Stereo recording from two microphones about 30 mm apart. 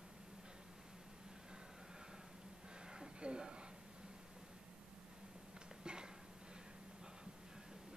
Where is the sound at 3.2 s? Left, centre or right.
Right.